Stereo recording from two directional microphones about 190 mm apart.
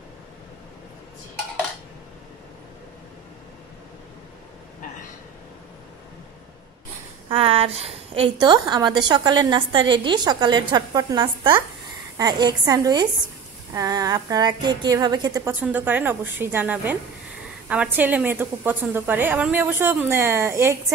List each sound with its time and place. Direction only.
7.2 s a woman's voice: 30° right (ahead or behind)
15.6 s a woman's voice: 10° right (ahead or behind)
17.9 s a woman's voice: 10° right (ahead or behind)